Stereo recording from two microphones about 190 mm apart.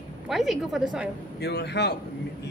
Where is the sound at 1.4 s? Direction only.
60° left (ahead or behind).